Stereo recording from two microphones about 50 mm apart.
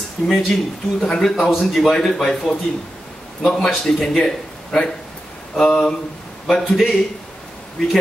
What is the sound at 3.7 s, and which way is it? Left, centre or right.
Speech, centre.